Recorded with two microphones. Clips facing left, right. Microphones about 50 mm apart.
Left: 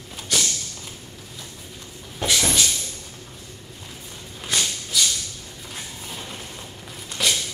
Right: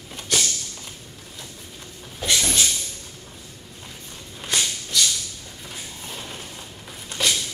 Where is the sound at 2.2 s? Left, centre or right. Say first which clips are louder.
Left 1 dB; left.